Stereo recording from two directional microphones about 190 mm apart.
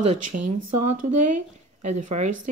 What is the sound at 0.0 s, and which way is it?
Speech, 40° right (ahead or behind).